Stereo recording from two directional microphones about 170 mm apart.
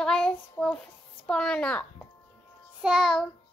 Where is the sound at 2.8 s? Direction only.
Centre (ahead or behind).